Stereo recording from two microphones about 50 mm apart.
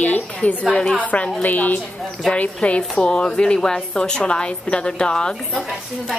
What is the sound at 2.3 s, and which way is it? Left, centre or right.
A woman's voice, left.